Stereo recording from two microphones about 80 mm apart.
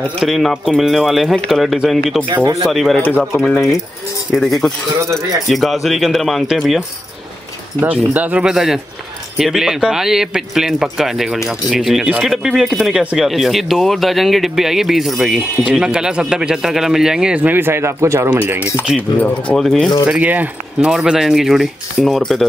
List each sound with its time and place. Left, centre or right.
0.2 s speech: centre
3.0 s speech: left
4.3 s speech: centre
5.0 s speech: right
5.5 s speech: centre
7.8 s speech: right
19.1 s speech: centre
19.5 s speech: centre
20.1 s speech: centre
20.9 s speech: centre